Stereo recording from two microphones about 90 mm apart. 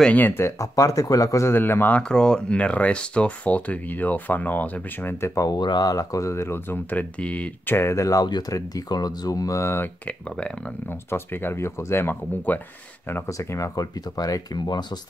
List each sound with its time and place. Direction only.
0.0 s speech: 20° left (ahead or behind)
5.3 s speech: 40° left (ahead or behind)
5.6 s speech: 50° left (ahead or behind); by 7.7 s 15° left (ahead or behind)
7.7 s speech: 30° left (ahead or behind)
10.0 s speech: 10° left (ahead or behind)
10.9 s speech: 25° left (ahead or behind)
13.3 s speech: 35° left (ahead or behind); by 14.9 s 50° left (ahead or behind)